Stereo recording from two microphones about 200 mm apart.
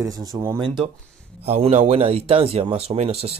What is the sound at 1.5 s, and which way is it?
Speech, 35° right (ahead or behind).